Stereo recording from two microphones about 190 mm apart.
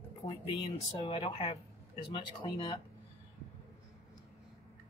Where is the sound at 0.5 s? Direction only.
25° left (ahead or behind).